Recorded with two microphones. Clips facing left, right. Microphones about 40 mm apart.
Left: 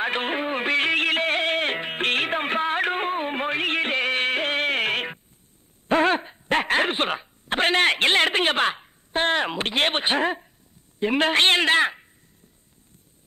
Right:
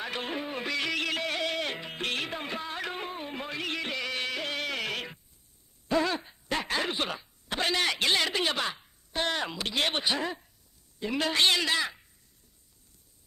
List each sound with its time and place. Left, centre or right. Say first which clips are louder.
0.0 s music: left 9 dB; left
5.9 s a sound: left 7 dB; left
11.0 s a woman's voice: left 7 dB; left